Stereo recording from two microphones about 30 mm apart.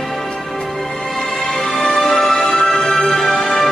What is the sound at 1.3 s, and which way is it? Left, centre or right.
Music, centre.